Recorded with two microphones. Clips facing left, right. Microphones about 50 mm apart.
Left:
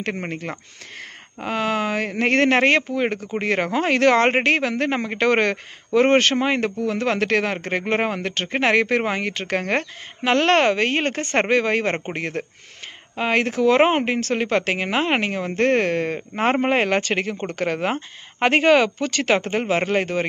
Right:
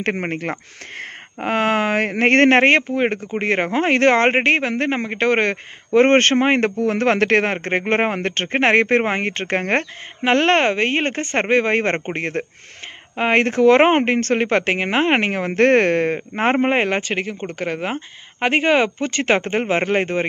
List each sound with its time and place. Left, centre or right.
0.1 s speech: right
2.6 s speech: right
4.3 s speech: right
5.9 s speech: right
11.6 s speech: right
16.2 s speech: right